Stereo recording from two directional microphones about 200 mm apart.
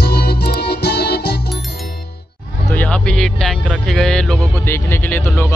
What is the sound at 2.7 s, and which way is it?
Music, 5° left (ahead or behind).